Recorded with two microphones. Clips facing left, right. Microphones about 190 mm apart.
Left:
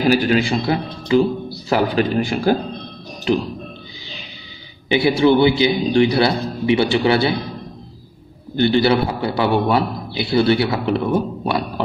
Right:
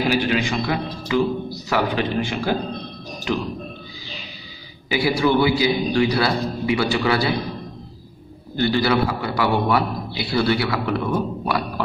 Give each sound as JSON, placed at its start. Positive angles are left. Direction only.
{"t": 0.0, "sound": "a man's voice", "side_deg": 40}
{"t": 4.8, "sound": "a man's voice", "side_deg": 25}
{"t": 8.5, "sound": "a man's voice", "side_deg": 25}